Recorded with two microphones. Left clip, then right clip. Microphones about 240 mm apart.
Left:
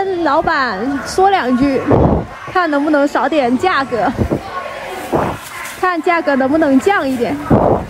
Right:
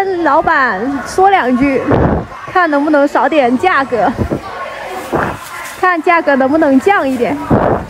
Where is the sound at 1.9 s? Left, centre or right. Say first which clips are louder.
Even; centre.